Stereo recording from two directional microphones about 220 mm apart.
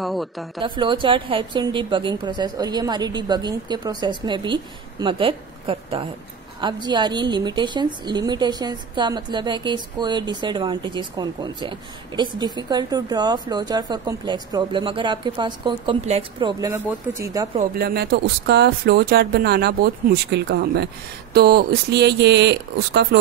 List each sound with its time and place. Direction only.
0.0 s a woman's voice: centre (ahead or behind)
0.6 s a woman's voice: 20° right (ahead or behind)
17.6 s speech: 45° right (ahead or behind)